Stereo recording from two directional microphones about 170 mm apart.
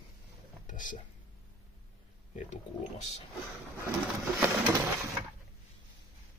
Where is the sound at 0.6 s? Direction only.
50° left (ahead or behind).